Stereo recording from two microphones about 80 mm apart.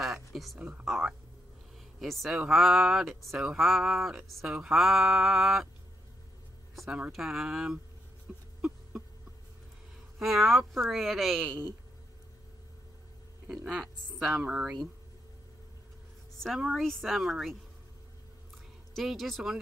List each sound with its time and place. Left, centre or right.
0.3 s a sound: centre
0.6 s speech: centre
0.8 s music: centre
6.7 s speech: centre
7.1 s music: centre
8.5 s a sound: centre
10.1 s music: centre
13.7 s music: centre
16.4 s music: centre
18.9 s music: centre